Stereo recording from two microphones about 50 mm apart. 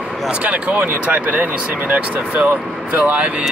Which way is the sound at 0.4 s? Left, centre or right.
Right.